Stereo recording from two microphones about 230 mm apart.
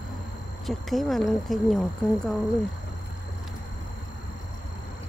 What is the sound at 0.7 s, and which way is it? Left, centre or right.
Speech, centre.